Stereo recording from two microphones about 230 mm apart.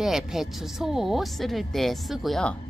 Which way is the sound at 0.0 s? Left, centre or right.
Centre.